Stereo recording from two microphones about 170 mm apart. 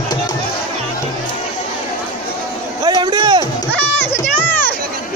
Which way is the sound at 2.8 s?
25° right (ahead or behind).